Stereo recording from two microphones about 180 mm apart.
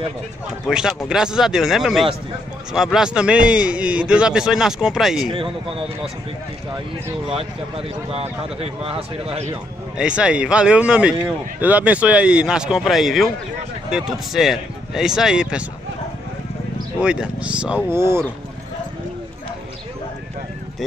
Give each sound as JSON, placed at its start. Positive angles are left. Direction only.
{"t": 0.7, "sound": "a man's voice", "side_deg": -5}
{"t": 5.3, "sound": "speech", "side_deg": -30}
{"t": 7.2, "sound": "speech", "side_deg": -30}
{"t": 9.9, "sound": "a man's voice", "side_deg": -5}
{"t": 17.0, "sound": "a man's voice", "side_deg": -5}